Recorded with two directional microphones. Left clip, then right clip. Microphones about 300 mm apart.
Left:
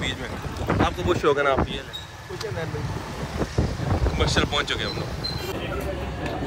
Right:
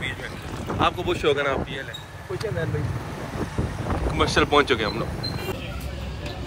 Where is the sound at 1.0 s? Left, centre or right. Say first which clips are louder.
Left 1 dB; centre.